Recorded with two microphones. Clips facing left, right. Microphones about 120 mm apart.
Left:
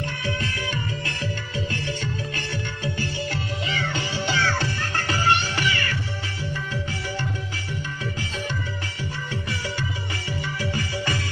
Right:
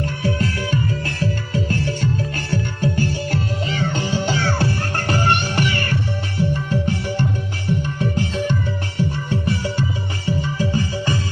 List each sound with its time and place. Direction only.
0.0 s music: 40° right (ahead or behind)
10.6 s music: 30° right (ahead or behind)